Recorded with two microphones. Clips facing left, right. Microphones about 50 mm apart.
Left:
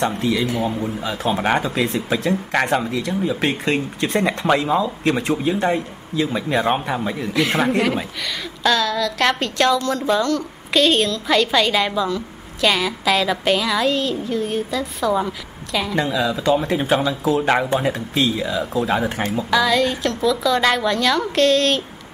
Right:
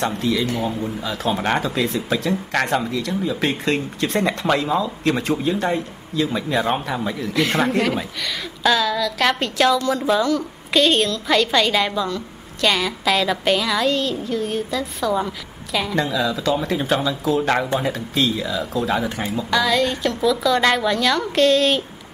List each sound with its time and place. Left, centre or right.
0.3 s a woman's voice: centre
16.0 s speech: centre
17.2 s speech: centre
19.5 s a woman's voice: centre